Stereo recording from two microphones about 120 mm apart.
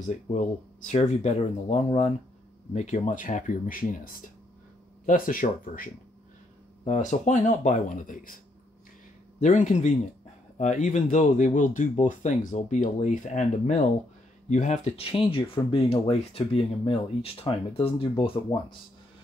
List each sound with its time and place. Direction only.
0.8 s speech: 70° left (ahead or behind); by 2.1 s 55° left (ahead or behind)
2.7 s speech: 85° left
5.4 s speech: 90° left
6.9 s speech: 80° left
9.4 s speech: 85° left
14.5 s speech: 75° left (ahead or behind); by 18.8 s 45° left (ahead or behind)